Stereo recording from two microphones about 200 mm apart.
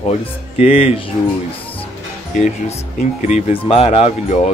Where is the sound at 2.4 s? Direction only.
35° left (ahead or behind).